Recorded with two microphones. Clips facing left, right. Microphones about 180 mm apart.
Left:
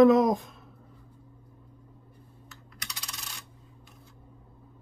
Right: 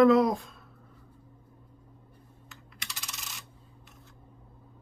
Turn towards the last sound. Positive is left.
turn(degrees=-5)  # may be behind; listen again after turning